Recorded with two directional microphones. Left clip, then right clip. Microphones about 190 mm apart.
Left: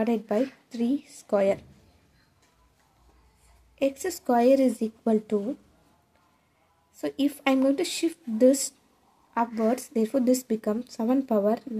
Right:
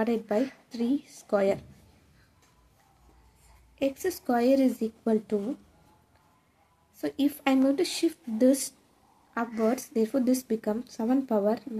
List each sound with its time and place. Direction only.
0.0 s speech: 20° left (ahead or behind)
3.7 s speech: 25° left (ahead or behind)
7.0 s speech: 20° left (ahead or behind)